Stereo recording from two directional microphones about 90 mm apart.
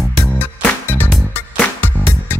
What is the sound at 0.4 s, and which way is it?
Music, 20° left (ahead or behind).